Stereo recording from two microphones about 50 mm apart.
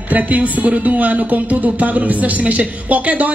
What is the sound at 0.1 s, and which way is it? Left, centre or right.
Speech, right.